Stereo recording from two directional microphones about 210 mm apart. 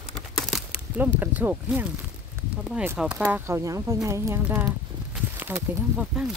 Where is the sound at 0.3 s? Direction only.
Centre (ahead or behind).